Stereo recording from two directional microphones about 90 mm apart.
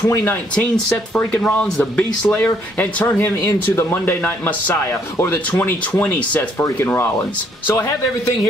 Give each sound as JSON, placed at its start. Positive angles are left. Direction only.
{"t": 0.1, "sound": "a man's voice", "side_deg": 25}
{"t": 1.1, "sound": "speech", "side_deg": 5}
{"t": 1.8, "sound": "a man's voice", "side_deg": 15}